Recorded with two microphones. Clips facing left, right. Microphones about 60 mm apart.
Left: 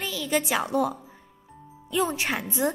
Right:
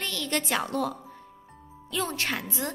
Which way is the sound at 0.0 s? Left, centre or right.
Centre.